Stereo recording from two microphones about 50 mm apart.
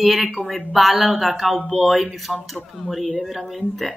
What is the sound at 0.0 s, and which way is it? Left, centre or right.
A woman's voice, centre.